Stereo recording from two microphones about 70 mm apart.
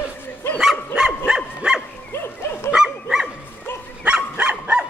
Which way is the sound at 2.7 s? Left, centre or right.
Centre.